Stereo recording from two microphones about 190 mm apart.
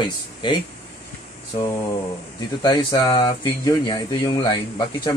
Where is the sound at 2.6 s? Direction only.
20° left (ahead or behind).